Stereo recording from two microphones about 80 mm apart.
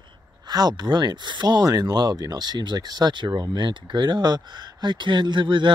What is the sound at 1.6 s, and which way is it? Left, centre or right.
Speech, right.